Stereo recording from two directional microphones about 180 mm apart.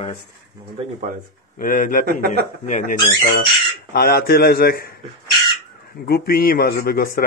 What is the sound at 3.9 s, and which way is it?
A man's voice, 60° left (ahead or behind).